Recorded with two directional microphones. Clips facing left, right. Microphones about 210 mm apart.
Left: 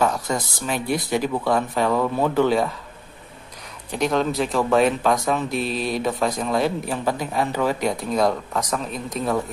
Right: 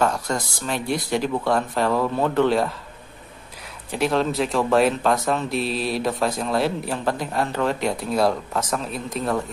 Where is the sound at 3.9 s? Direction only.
Centre (ahead or behind).